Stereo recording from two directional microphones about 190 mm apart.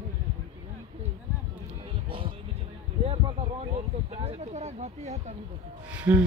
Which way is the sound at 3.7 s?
35° right (ahead or behind).